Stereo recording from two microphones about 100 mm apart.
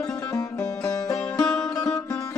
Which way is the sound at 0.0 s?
35° left (ahead or behind).